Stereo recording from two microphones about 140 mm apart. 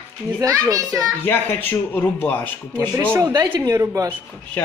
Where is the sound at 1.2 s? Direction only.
15° left (ahead or behind).